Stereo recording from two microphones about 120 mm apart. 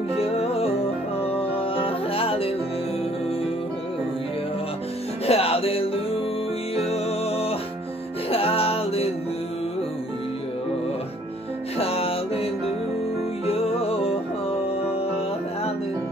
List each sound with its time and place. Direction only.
0.2 s music: 55° left (ahead or behind)
5.2 s music: 55° left (ahead or behind)
11.8 s music: 55° left (ahead or behind)
13.5 s music: 55° left (ahead or behind)